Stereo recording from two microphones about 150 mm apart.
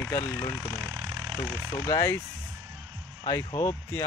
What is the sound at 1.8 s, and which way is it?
Speech, 20° left (ahead or behind).